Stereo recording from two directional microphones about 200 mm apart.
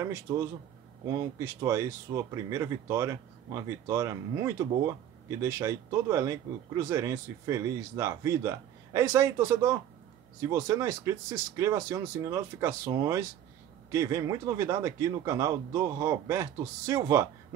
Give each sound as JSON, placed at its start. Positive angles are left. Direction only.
{"t": 0.0, "sound": "speech", "side_deg": -15}